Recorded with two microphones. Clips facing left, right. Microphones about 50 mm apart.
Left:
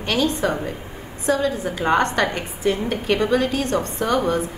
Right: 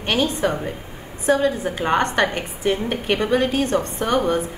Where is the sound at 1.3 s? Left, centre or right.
Centre.